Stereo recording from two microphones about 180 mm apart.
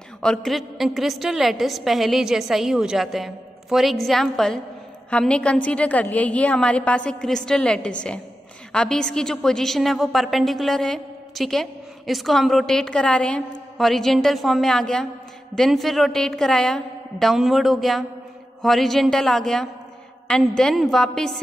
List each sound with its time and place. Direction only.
0.2 s a woman's voice: 5° left (ahead or behind)